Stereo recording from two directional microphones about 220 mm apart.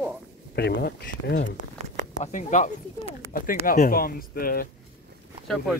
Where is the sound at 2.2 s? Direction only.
35° left (ahead or behind).